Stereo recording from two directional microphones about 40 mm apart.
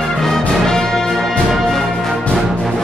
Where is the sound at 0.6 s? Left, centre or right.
Centre.